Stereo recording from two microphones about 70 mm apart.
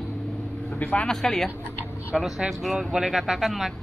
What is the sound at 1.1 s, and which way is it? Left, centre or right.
Speech, centre.